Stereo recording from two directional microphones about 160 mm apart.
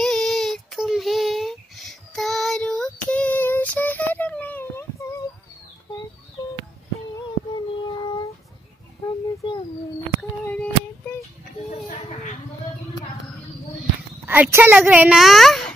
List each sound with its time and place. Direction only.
0.0 s child singing: 5° left (ahead or behind)
9.0 s a sound: 30° left (ahead or behind)
10.5 s female singing: 10° left (ahead or behind)
14.2 s a child's voice: 10° right (ahead or behind)